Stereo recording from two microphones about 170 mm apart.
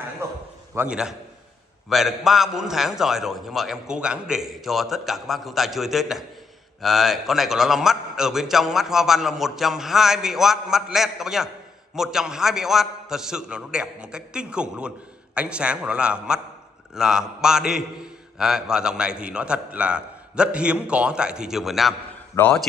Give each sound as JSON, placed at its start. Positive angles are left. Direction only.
{"t": 0.2, "sound": "a sound", "side_deg": -15}
{"t": 0.7, "sound": "a man's voice", "side_deg": -5}
{"t": 22.3, "sound": "a man's voice", "side_deg": 10}